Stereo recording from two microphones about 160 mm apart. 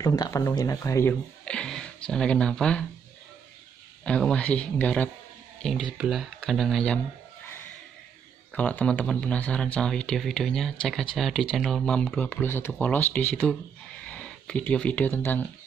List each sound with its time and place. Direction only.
0.0 s speech: 20° left (ahead or behind)
1.4 s a sound: 5° left (ahead or behind)
4.0 s speech: 5° left (ahead or behind)
8.5 s speech: 10° left (ahead or behind)